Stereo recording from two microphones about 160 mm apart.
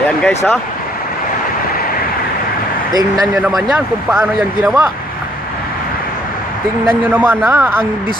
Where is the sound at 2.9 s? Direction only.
25° right (ahead or behind).